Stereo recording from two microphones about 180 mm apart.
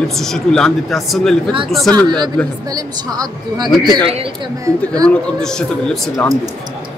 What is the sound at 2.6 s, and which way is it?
A woman's voice, 20° right (ahead or behind).